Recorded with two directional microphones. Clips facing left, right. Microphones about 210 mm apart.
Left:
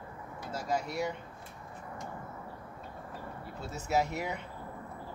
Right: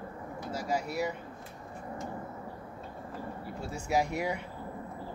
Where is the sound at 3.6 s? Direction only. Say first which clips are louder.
Right 1 dB; 10° right (ahead or behind).